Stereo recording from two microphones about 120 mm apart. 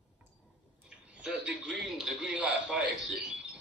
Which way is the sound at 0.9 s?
10° right (ahead or behind).